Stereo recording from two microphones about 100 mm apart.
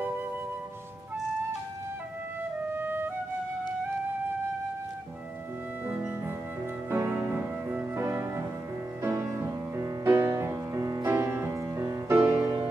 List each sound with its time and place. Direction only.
2.7 s music: 20° right (ahead or behind)
5.9 s music: 20° right (ahead or behind)